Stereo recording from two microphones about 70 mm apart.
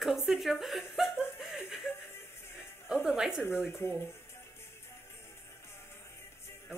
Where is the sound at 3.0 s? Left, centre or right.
Centre.